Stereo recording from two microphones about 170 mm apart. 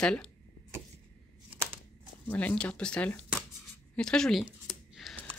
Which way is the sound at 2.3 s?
10° left (ahead or behind).